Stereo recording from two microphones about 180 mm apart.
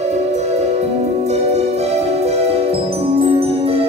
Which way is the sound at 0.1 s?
35° right (ahead or behind).